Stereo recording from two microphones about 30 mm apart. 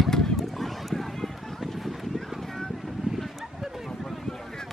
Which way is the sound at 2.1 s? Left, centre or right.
Centre.